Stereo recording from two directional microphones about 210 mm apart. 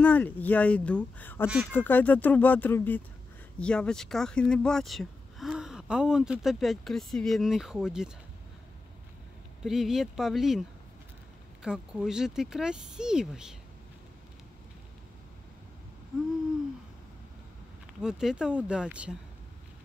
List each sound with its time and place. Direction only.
0.0 s speech: 5° left (ahead or behind)
9.7 s speech: centre (ahead or behind)
11.6 s speech: 5° right (ahead or behind)
18.0 s speech: 5° right (ahead or behind)